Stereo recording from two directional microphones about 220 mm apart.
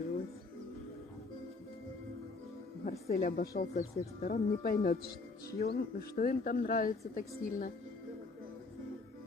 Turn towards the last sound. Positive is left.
turn(degrees=40)  # may be behind; listen again after turning